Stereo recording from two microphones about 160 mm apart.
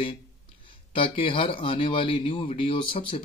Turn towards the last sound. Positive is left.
turn(degrees=35)  # may be behind; listen again after turning